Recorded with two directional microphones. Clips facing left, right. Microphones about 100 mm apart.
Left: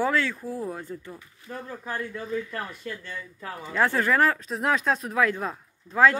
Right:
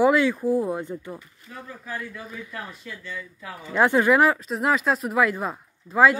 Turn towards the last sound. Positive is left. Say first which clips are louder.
# right 2 dB
turn(degrees=-5)  # may be behind; listen again after turning